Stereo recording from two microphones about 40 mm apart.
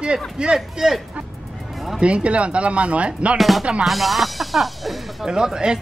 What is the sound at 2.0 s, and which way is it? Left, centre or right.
Speech, right.